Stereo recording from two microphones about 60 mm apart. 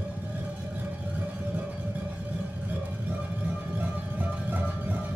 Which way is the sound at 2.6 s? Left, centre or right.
Right.